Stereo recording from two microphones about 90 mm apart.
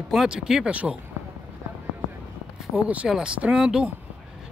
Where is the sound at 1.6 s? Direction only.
30° right (ahead or behind).